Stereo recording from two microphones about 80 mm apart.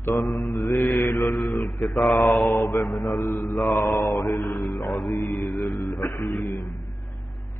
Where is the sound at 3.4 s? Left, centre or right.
Centre.